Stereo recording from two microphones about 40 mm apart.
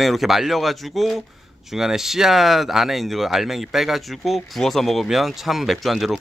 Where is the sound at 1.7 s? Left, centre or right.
Centre.